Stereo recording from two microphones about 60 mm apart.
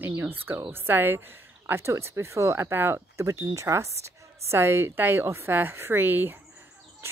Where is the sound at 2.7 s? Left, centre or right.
Right.